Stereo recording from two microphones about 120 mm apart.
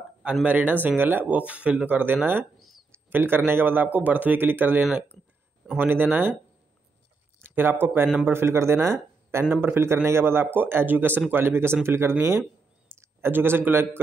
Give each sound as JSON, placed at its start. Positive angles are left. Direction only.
{"t": 0.2, "sound": "speech", "side_deg": -10}
{"t": 7.4, "sound": "speech", "side_deg": -20}